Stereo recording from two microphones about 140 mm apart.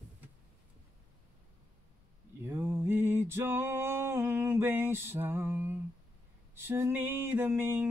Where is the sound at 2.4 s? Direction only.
15° right (ahead or behind).